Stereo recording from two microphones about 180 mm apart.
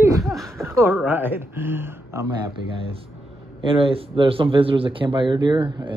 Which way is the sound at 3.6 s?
30° right (ahead or behind).